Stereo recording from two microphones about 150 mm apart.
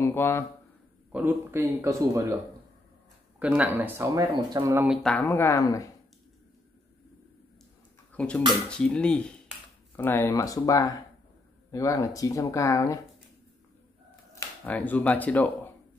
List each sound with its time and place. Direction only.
0.0 s speech: 15° left (ahead or behind)
1.1 s a man's voice: 15° right (ahead or behind)
3.3 s a man's voice: 10° right (ahead or behind)
4.8 s speech: centre (ahead or behind); by 5.9 s 20° left (ahead or behind)
8.1 s a sound: 10° left (ahead or behind)
8.5 s speech: 5° left (ahead or behind); by 13.0 s 20° left (ahead or behind)
14.6 s speech: 10° left (ahead or behind)